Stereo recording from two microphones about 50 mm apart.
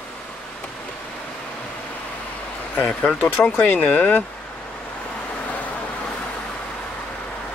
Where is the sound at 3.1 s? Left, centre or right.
Left.